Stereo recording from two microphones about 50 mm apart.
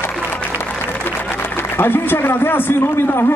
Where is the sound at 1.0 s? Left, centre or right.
Left.